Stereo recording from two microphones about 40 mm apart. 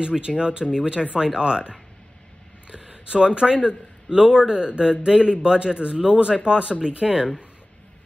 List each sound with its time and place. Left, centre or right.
0.0 s a man's voice: right